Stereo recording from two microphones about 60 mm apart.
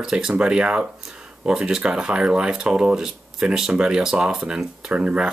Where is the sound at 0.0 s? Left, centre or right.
Centre.